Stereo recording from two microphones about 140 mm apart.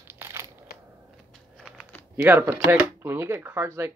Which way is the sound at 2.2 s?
15° right (ahead or behind).